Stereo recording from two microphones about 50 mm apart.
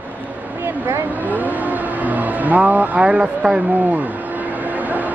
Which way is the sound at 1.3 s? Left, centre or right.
Right.